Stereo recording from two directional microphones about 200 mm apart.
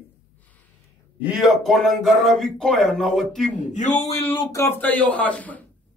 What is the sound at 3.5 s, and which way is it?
Speech, 35° left (ahead or behind).